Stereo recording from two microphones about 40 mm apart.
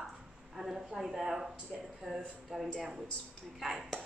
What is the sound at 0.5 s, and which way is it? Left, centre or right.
A woman's voice, centre.